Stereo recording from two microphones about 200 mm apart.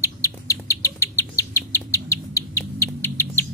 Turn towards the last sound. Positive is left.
turn(degrees=10)  # may be behind; listen again after turning